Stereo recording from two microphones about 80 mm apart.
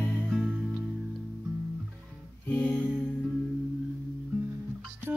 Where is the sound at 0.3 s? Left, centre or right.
Centre.